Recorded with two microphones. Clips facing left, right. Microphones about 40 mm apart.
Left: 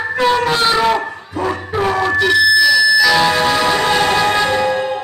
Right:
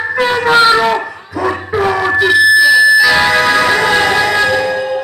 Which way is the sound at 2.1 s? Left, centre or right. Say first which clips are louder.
Right 4 dB; centre.